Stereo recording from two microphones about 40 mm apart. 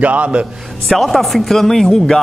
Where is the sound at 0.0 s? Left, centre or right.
Right.